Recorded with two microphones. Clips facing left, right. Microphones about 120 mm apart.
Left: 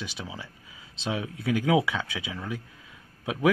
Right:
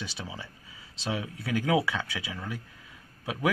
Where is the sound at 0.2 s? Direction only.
10° left (ahead or behind).